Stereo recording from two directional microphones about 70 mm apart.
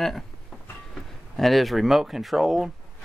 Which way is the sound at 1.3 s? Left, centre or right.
Centre.